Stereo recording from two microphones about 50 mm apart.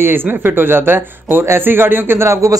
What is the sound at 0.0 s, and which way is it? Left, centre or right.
Speech, right.